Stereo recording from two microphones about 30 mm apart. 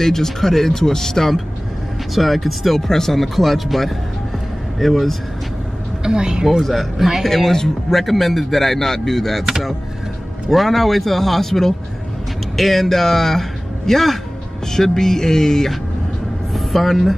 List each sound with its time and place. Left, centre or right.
0.0 s speech: centre
2.1 s speech: centre
6.0 s speech: right
6.6 s speech: centre
10.5 s a man's voice: centre
16.5 s speech: centre